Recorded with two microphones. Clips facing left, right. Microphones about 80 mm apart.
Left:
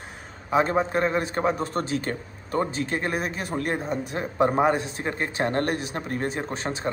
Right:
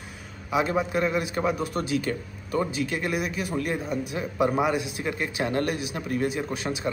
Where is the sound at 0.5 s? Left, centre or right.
Left.